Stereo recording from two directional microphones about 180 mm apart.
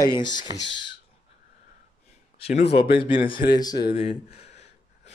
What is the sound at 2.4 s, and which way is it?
Speech, 35° left (ahead or behind).